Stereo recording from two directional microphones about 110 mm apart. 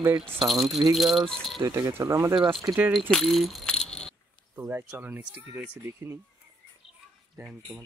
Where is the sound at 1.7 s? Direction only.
25° right (ahead or behind).